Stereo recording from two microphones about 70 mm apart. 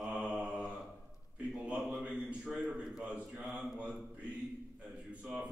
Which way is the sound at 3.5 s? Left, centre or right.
Centre.